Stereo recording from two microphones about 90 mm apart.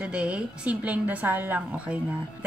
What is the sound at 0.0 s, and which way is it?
A woman's voice, 10° right (ahead or behind).